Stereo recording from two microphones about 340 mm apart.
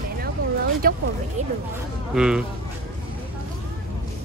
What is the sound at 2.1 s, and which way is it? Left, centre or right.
Speech, centre.